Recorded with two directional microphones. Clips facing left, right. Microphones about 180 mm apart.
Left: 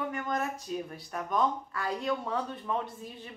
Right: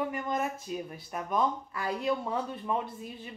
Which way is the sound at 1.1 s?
15° right (ahead or behind).